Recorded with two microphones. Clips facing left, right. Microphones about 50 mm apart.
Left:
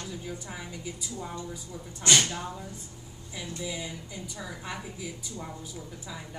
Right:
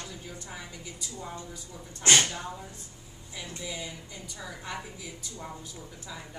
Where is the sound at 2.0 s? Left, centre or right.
Right.